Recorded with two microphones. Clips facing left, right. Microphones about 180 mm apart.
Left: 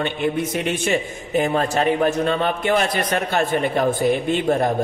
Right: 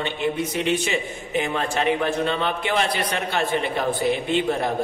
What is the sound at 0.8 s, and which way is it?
A man's voice, 45° left (ahead or behind).